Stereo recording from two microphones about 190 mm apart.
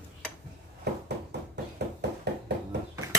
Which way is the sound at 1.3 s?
60° right (ahead or behind).